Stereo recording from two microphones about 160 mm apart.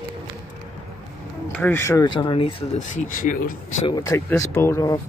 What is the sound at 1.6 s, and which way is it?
Speech, 15° left (ahead or behind).